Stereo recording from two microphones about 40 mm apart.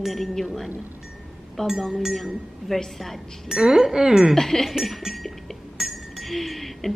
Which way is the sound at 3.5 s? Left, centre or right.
Centre.